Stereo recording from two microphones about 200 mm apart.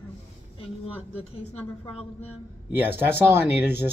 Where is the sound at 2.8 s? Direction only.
10° right (ahead or behind).